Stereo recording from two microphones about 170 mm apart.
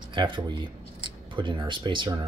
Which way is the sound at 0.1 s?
25° right (ahead or behind).